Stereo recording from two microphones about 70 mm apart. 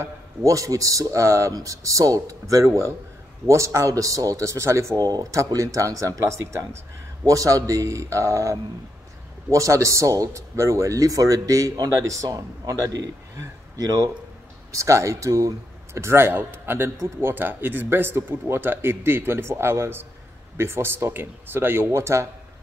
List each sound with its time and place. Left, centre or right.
0.0 s speech: right
12.1 s a man's voice: right
14.7 s speech: right